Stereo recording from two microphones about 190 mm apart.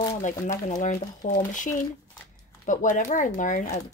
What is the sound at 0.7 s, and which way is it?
Speech, 40° left (ahead or behind).